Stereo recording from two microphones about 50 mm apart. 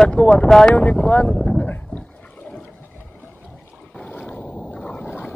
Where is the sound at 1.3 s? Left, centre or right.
Centre.